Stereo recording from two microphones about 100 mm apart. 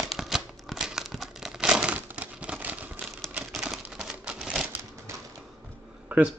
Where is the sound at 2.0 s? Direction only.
15° right (ahead or behind).